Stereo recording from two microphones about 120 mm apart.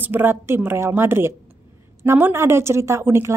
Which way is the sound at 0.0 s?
15° right (ahead or behind).